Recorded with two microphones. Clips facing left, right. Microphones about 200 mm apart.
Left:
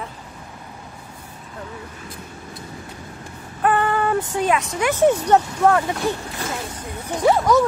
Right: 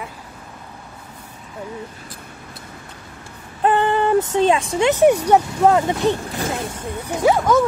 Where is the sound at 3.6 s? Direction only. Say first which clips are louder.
Right 2 dB; 25° right (ahead or behind).